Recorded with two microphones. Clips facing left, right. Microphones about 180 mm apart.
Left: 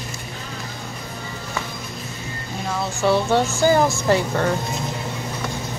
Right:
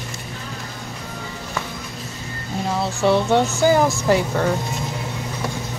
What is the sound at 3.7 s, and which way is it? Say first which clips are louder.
Speech: even; 10° right (ahead or behind).